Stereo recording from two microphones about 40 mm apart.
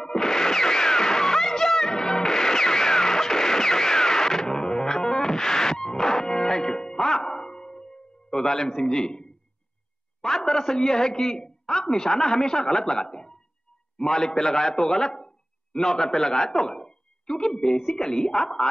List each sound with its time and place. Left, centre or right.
0.0 s music: centre
4.5 s music: centre
8.4 s a man's voice: centre
13.9 s a man's voice: centre